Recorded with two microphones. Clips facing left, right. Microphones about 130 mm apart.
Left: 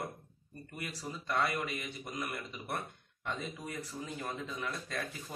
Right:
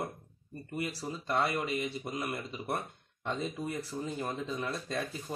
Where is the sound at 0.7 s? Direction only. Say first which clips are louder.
Right 6 dB; 30° right (ahead or behind).